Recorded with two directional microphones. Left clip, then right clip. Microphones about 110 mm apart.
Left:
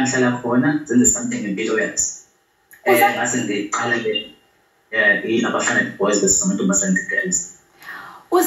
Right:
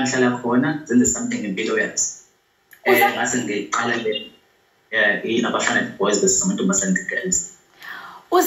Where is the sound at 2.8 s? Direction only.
15° right (ahead or behind).